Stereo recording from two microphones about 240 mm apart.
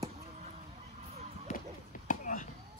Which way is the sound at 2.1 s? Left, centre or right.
Left.